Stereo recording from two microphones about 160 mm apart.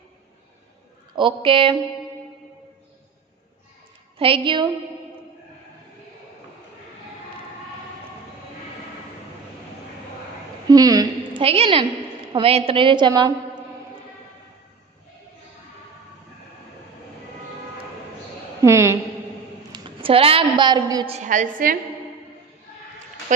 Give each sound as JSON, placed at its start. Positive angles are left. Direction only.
{"t": 1.1, "sound": "a woman's voice", "side_deg": -30}
{"t": 4.2, "sound": "a woman's voice", "side_deg": -30}
{"t": 10.7, "sound": "a sound", "side_deg": -25}
{"t": 11.4, "sound": "a woman's voice", "side_deg": -35}
{"t": 18.6, "sound": "a woman's voice", "side_deg": -15}
{"t": 19.7, "sound": "a woman's voice", "side_deg": -35}
{"t": 21.1, "sound": "a woman's voice", "side_deg": -50}